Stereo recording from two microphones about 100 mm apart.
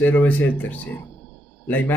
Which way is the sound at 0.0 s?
15° left (ahead or behind).